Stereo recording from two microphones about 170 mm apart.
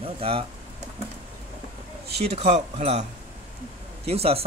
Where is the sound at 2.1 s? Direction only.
40° right (ahead or behind).